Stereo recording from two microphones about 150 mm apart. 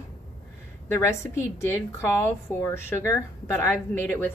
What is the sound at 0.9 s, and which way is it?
A woman's voice, 20° left (ahead or behind).